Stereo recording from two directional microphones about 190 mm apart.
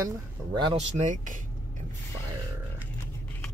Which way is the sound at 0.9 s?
40° right (ahead or behind).